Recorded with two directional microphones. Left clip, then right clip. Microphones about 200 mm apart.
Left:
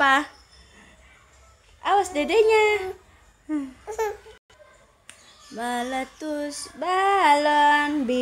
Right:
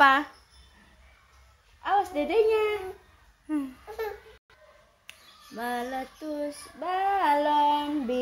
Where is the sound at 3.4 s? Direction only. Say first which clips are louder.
Left 2 dB; 5° right (ahead or behind).